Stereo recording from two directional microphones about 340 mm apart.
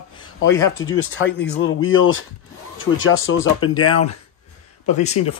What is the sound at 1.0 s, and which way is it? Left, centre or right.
Speech, left.